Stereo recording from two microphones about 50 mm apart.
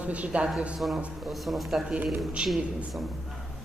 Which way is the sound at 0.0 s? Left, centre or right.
Right.